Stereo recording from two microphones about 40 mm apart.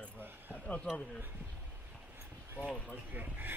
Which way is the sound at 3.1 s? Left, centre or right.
Right.